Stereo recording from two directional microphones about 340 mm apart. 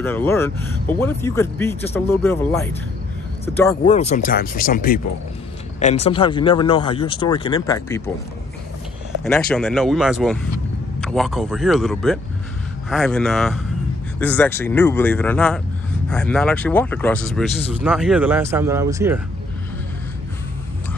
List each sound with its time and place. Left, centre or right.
0.0 s speech: centre
9.2 s speech: centre